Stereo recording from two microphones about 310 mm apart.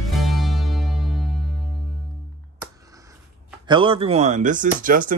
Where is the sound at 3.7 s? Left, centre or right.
Centre.